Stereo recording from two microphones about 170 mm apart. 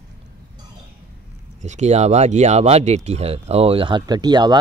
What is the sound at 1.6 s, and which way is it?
Speech, 45° right (ahead or behind).